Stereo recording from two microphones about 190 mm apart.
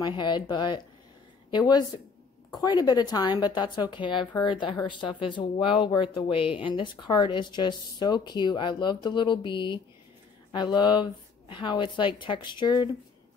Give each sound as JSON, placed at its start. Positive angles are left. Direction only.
{"t": 0.0, "sound": "speech", "side_deg": 25}